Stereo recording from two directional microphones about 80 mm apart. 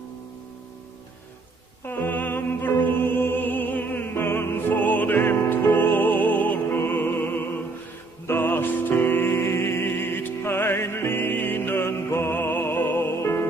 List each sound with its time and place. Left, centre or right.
1.9 s music: left